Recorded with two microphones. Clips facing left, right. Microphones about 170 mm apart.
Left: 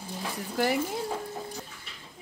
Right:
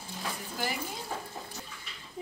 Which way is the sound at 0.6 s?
70° left (ahead or behind).